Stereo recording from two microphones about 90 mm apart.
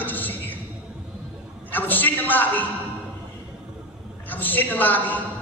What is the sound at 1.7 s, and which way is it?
Speech, 20° left (ahead or behind).